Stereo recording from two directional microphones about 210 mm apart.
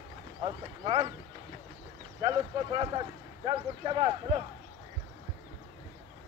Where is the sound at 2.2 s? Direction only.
20° right (ahead or behind).